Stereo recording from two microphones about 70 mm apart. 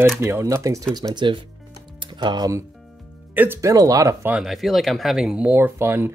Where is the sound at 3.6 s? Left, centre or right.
Right.